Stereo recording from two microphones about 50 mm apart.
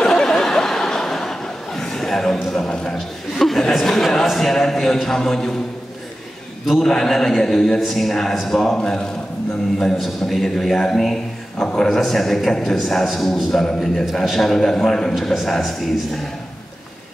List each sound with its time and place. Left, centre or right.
0.0 s chuckle: centre
2.7 s a man's voice: centre
6.6 s a man's voice: centre